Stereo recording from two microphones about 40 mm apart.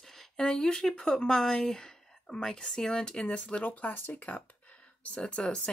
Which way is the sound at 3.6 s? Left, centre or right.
Left.